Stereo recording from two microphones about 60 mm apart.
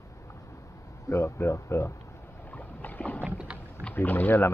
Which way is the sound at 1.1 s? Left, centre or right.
Left.